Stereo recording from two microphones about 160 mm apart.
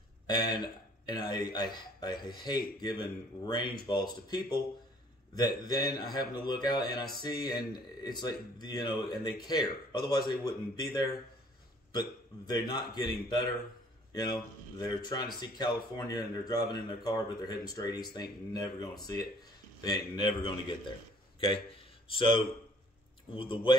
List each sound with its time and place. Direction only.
0.3 s a man's voice: 25° left (ahead or behind)
15.0 s a man's voice: 25° left (ahead or behind)